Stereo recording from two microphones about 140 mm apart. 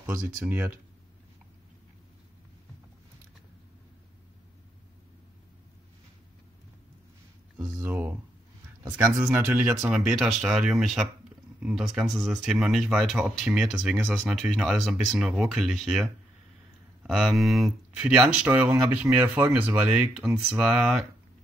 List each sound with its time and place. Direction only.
0.0 s speech: 10° right (ahead or behind)
7.8 s a sound: 15° right (ahead or behind)
8.9 s speech: 10° right (ahead or behind)
9.8 s speech: 5° right (ahead or behind)